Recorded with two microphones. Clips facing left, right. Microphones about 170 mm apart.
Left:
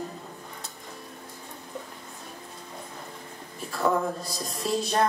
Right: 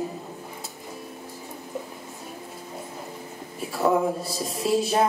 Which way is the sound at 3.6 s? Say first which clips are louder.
Right 4 dB; 5° right (ahead or behind).